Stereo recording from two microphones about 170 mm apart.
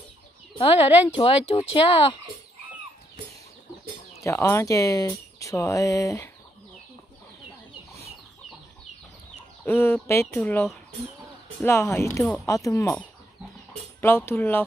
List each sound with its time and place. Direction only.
0.6 s speech: 35° left (ahead or behind)
4.2 s speech: 15° left (ahead or behind)
9.7 s speech: 10° left (ahead or behind)
14.0 s speech: 15° left (ahead or behind)